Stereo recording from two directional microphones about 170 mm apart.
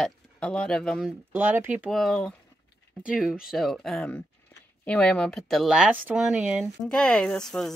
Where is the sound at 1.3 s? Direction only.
10° right (ahead or behind).